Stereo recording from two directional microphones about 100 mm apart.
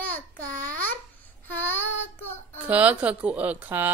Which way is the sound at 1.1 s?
20° left (ahead or behind).